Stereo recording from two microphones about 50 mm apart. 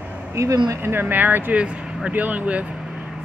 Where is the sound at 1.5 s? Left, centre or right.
Right.